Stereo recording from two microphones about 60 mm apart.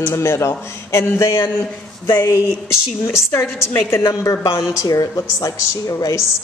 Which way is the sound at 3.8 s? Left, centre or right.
Left.